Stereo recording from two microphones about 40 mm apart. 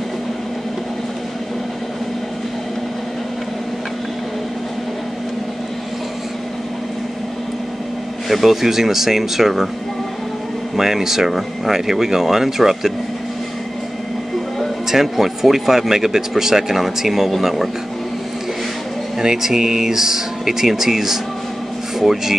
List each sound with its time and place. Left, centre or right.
8.3 s speech: centre
10.8 s speech: centre
14.9 s speech: centre
19.1 s speech: centre